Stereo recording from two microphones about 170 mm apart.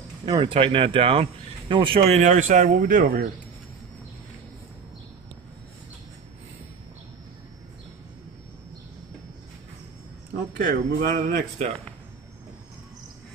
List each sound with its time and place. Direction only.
0.2 s speech: 30° right (ahead or behind)
2.0 s speech: 40° right (ahead or behind); by 3.3 s 55° right (ahead or behind)
10.6 s speech: 55° right (ahead or behind)